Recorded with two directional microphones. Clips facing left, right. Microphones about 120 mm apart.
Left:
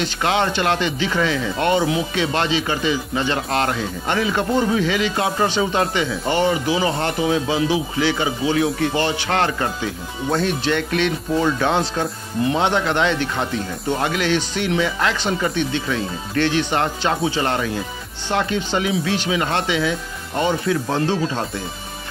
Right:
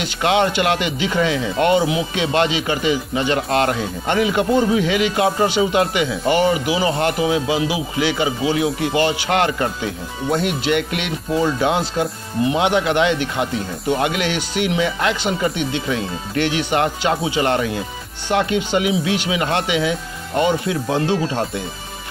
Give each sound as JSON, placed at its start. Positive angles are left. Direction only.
{"t": 0.0, "sound": "speech", "side_deg": -20}
{"t": 18.3, "sound": "speech", "side_deg": -20}